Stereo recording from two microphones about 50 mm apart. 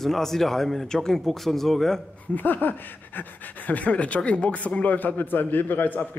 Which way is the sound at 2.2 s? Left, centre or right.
Left.